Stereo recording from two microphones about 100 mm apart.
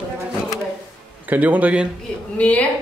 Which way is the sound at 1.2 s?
15° right (ahead or behind).